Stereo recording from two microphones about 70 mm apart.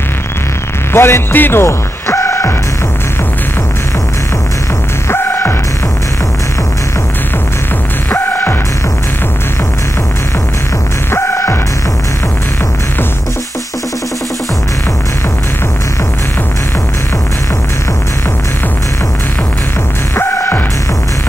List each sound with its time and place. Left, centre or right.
0.9 s speech: left
5.1 s throbbing: left
8.1 s music: left
11.1 s throbbing: left